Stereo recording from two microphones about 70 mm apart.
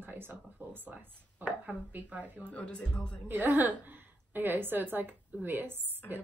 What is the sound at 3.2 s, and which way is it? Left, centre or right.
Speech, right.